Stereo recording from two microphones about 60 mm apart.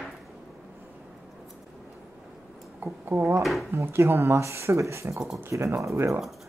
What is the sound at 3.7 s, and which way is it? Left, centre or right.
Speech, right.